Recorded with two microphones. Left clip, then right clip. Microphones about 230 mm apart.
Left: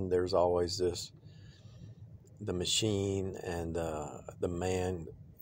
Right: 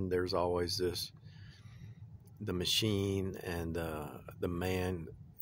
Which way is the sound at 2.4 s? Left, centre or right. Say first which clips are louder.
Left 1 dB; centre.